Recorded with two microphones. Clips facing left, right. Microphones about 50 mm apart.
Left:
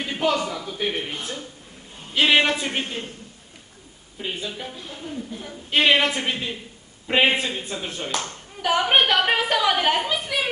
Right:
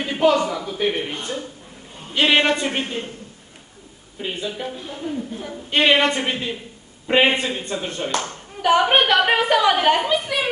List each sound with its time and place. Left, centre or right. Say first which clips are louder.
0.0 s a woman's voice: right 5 dB; centre
4.2 s speech: right 3 dB; centre
4.7 s a woman's voice: right 4 dB; right
5.7 s speech: right 2 dB; centre